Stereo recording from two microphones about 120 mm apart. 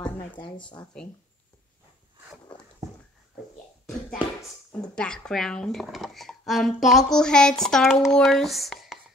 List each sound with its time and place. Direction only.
0.4 s speech: 40° left (ahead or behind)
4.8 s speech: 5° left (ahead or behind)